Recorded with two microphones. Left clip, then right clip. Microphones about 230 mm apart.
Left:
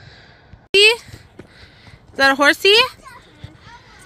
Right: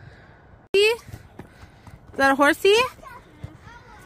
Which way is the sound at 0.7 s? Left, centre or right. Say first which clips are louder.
Left 7 dB; centre.